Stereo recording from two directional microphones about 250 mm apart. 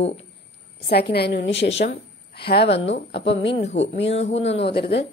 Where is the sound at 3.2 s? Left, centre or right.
Left.